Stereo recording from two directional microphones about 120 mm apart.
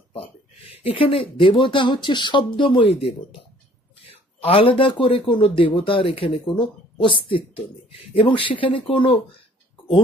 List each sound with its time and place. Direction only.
0.9 s speech: 50° left (ahead or behind)
4.4 s speech: 50° left (ahead or behind)